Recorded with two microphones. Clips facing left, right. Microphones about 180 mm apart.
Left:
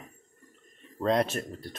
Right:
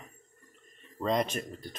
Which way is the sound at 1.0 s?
5° left (ahead or behind).